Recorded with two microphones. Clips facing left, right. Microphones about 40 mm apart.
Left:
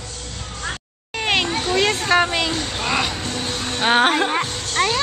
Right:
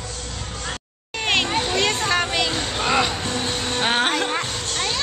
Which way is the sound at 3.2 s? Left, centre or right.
Centre.